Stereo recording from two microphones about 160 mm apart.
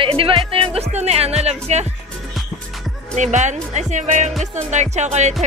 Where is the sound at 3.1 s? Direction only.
45° right (ahead or behind).